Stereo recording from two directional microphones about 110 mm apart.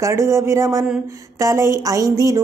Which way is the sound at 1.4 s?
25° right (ahead or behind).